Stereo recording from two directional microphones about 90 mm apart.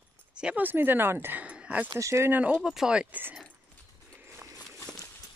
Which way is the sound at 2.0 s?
35° right (ahead or behind).